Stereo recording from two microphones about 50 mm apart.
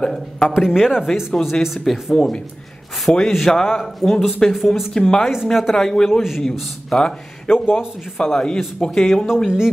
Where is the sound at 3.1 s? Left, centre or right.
Left.